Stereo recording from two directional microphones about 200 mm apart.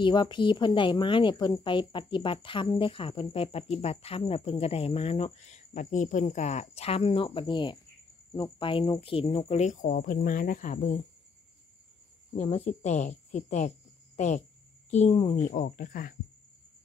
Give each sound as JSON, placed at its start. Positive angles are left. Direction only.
{"t": 0.0, "sound": "speech", "side_deg": 20}
{"t": 12.4, "sound": "speech", "side_deg": 30}